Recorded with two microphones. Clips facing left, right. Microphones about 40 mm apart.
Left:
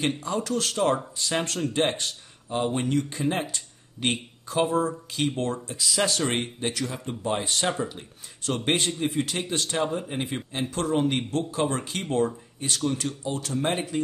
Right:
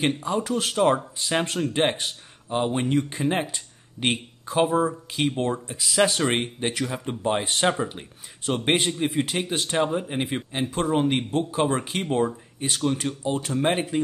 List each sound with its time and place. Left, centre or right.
0.2 s speech: centre
8.6 s speech: centre